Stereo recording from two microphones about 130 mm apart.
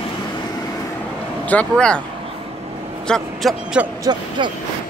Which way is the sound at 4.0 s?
35° right (ahead or behind).